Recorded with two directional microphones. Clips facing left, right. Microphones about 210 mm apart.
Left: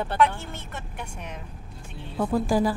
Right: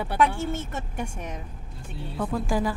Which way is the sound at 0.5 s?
45° right (ahead or behind).